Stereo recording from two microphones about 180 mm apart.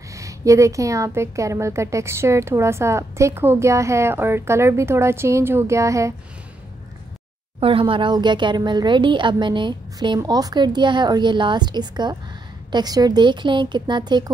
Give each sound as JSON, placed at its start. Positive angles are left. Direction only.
{"t": 0.1, "sound": "a woman's voice", "side_deg": -15}
{"t": 7.6, "sound": "speech", "side_deg": -30}